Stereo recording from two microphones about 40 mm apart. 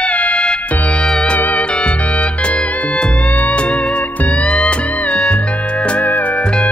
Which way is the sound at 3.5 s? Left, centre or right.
Left.